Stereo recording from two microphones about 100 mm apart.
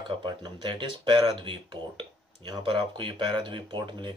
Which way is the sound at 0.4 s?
50° right (ahead or behind).